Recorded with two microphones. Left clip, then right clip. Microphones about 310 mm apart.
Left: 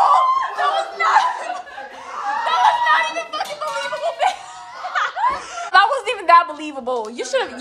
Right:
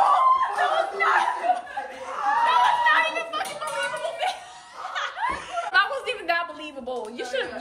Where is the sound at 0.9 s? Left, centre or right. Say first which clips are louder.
Left 5 dB; centre.